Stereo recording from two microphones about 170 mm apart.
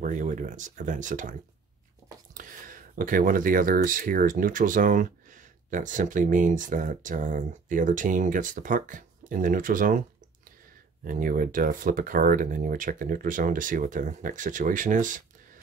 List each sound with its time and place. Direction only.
0.0 s speech: 50° right (ahead or behind)
2.3 s speech: 50° right (ahead or behind)
11.1 s speech: 55° right (ahead or behind)